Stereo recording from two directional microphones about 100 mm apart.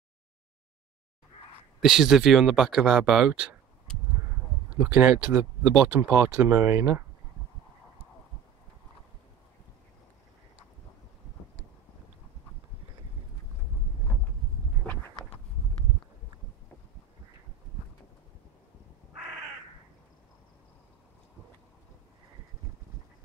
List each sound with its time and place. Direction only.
1.8 s speech: 5° right (ahead or behind)
4.6 s speech: 15° right (ahead or behind)
15.2 s a sound: 20° left (ahead or behind)